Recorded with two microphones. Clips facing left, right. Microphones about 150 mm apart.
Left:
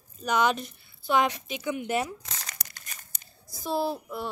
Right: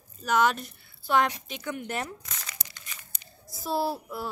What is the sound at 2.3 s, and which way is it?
Crumpling, 35° left (ahead or behind).